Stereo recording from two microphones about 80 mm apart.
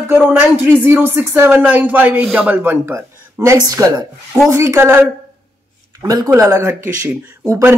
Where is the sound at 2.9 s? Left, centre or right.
Right.